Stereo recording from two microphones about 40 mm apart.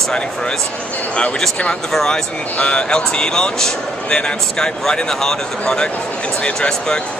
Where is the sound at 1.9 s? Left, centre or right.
Centre.